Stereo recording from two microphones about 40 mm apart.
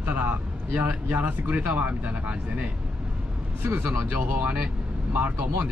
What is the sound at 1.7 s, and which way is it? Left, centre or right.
Speech, right.